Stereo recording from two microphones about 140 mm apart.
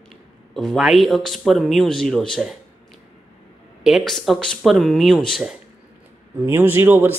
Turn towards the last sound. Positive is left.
turn(degrees=-15)  # may be behind; listen again after turning